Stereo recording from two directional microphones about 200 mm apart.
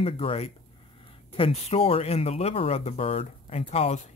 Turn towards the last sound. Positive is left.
turn(degrees=35)  # may be behind; listen again after turning